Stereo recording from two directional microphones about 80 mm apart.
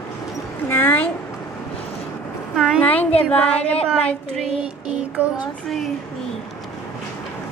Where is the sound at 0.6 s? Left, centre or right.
Left.